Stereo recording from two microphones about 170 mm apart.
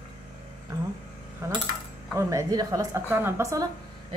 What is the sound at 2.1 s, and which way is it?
A woman's voice, 20° right (ahead or behind).